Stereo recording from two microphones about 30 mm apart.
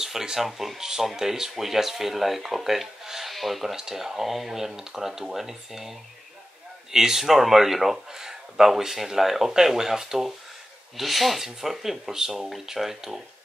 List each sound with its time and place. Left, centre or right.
0.0 s speech: centre
0.7 s speech: centre
3.7 s speech: centre